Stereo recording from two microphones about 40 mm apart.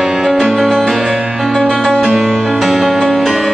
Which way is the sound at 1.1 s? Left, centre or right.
Right.